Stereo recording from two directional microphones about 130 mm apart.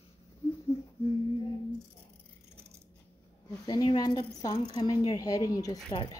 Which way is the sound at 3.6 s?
30° left (ahead or behind).